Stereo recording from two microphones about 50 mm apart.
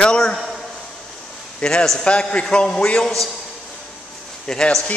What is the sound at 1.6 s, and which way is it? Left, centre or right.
A man's voice, left.